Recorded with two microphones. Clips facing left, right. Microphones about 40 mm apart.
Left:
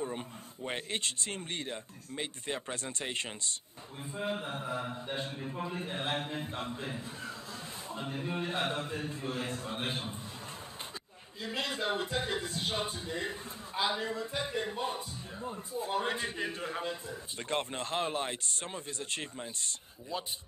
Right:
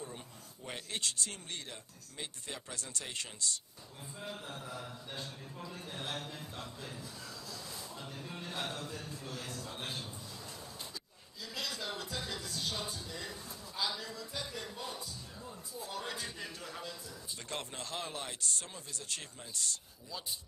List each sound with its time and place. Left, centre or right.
0.7 s speech: left
11.4 s speech: left